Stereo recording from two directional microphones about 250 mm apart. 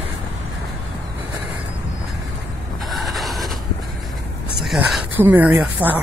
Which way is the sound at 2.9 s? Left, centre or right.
Centre.